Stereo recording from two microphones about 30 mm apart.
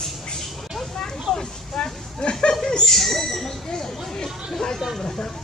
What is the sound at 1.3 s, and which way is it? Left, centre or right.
Speech, left.